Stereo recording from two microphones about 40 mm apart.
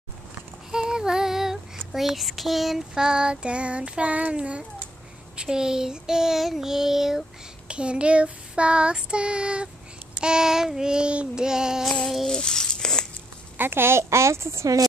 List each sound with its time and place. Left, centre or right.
0.7 s child singing: centre
2.9 s child singing: centre
7.6 s child singing: right
12.3 s a sound: centre
13.6 s a child's voice: right